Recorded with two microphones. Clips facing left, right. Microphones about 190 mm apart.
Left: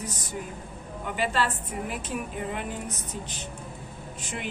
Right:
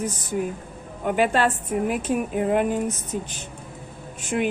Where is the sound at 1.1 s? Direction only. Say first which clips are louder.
Right 7 dB; 50° right (ahead or behind).